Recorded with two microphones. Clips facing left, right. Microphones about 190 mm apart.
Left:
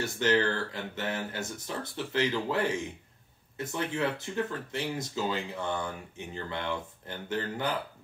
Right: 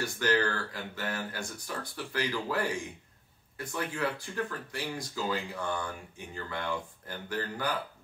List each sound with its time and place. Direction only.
0.0 s speech: 25° left (ahead or behind)